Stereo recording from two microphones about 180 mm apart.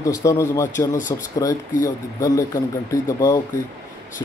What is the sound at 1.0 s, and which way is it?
Speech, 45° left (ahead or behind).